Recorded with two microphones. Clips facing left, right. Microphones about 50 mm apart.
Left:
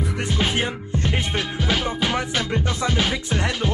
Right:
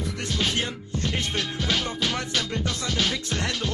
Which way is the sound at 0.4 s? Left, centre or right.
Left.